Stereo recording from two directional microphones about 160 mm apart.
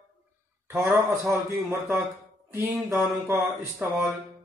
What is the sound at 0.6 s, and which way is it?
Speech, 10° right (ahead or behind).